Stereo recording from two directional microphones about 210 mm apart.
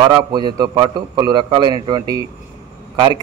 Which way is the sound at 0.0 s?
20° right (ahead or behind).